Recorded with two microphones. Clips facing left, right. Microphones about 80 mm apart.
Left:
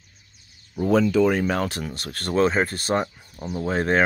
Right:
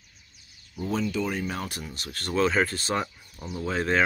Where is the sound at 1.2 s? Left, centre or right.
Left.